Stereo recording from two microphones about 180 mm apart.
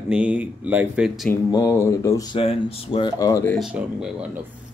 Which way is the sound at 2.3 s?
30° left (ahead or behind).